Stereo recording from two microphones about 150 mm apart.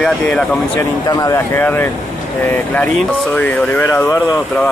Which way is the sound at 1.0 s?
25° left (ahead or behind).